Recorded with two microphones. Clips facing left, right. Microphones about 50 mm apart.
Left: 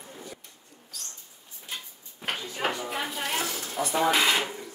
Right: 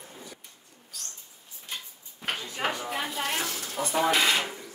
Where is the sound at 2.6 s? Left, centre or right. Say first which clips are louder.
Even; centre.